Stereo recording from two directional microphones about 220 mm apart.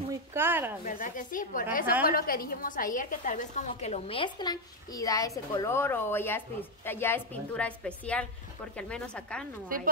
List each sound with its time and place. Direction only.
0.3 s speech: 10° right (ahead or behind)
0.8 s a woman's voice: 40° left (ahead or behind); by 9.5 s 5° left (ahead or behind)